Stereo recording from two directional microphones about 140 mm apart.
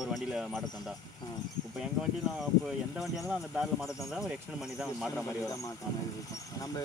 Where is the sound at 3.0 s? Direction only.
Centre (ahead or behind).